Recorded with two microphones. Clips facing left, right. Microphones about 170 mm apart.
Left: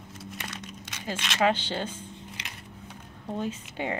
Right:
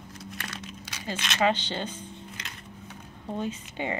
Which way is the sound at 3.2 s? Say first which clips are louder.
Even; centre (ahead or behind).